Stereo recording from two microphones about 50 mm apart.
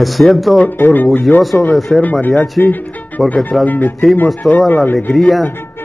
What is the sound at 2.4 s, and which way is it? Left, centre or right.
Speech, left.